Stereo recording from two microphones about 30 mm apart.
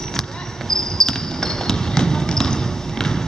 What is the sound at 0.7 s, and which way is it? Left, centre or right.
Basketball bounce, centre.